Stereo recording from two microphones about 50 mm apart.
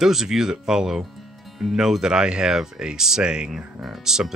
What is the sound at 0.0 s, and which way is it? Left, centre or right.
Speech, centre.